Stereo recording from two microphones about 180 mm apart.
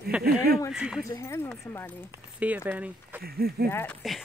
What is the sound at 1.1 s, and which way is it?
Speech, 15° left (ahead or behind).